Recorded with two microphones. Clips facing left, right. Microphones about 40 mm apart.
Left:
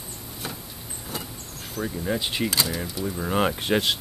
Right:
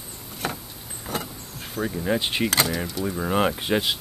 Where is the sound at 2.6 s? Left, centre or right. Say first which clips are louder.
Right 3 dB; centre.